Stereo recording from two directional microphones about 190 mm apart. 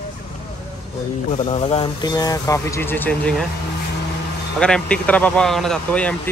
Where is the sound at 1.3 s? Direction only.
30° left (ahead or behind); by 3.4 s 5° left (ahead or behind).